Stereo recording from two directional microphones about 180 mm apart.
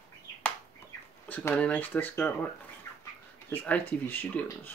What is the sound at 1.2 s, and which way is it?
Speech, 10° left (ahead or behind).